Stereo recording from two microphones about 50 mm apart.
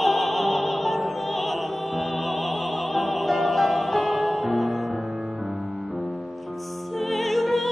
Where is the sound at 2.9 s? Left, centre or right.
Centre.